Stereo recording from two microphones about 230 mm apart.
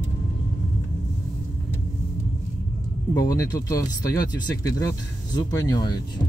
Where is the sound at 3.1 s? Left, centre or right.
Centre.